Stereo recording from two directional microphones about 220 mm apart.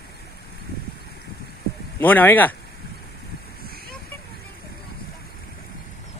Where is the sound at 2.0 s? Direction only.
10° left (ahead or behind).